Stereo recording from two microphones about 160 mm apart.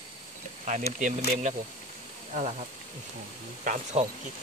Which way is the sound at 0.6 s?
50° right (ahead or behind).